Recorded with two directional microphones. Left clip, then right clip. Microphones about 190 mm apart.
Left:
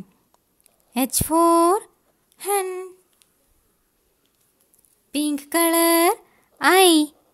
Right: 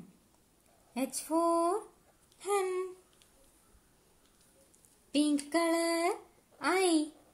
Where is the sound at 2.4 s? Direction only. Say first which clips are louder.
Left 8 dB; 35° left (ahead or behind).